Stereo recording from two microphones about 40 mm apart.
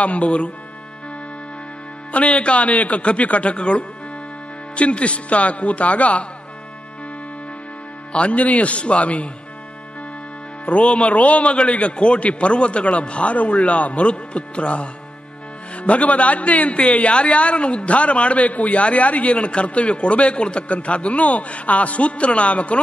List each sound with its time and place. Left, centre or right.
0.0 s a man's voice: left
2.1 s a man's voice: left
8.1 s a man's voice: left
10.6 s a man's voice: left